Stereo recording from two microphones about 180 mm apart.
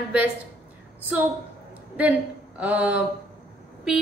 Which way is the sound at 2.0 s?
10° right (ahead or behind).